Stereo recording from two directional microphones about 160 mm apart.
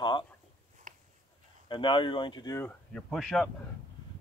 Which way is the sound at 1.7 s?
30° left (ahead or behind).